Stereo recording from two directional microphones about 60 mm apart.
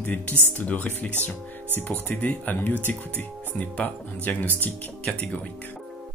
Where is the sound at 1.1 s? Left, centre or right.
Right.